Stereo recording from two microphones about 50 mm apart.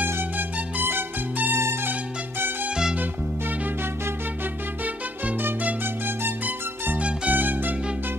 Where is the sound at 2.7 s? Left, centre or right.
Centre.